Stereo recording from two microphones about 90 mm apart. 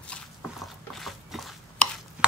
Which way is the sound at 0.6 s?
Centre (ahead or behind).